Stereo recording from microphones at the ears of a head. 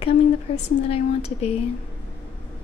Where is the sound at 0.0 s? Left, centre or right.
Left.